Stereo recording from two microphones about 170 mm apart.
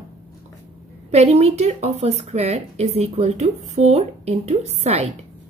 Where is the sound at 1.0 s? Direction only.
40° right (ahead or behind).